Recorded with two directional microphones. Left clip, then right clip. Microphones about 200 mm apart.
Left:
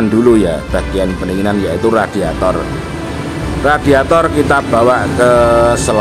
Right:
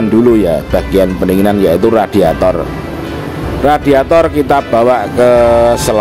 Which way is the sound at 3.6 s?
25° right (ahead or behind).